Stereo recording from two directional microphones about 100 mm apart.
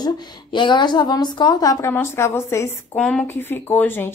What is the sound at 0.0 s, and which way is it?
A woman's voice, 50° left (ahead or behind).